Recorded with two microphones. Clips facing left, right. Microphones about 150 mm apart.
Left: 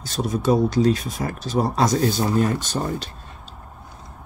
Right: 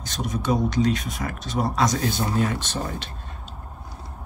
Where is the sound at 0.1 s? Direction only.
30° left (ahead or behind).